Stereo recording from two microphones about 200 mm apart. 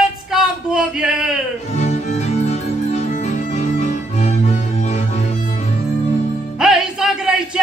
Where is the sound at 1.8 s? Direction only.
35° left (ahead or behind).